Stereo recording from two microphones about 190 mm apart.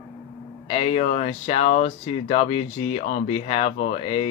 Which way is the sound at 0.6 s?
30° left (ahead or behind).